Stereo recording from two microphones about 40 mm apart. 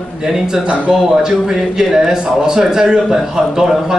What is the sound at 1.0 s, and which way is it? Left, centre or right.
A man's voice, centre.